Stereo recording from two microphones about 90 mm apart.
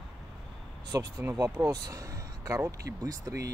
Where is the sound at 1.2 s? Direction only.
30° right (ahead or behind).